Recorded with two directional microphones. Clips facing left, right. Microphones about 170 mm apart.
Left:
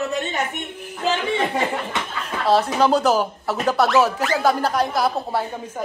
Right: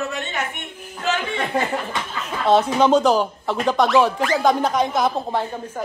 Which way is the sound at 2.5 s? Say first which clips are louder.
Right 2 dB; centre (ahead or behind).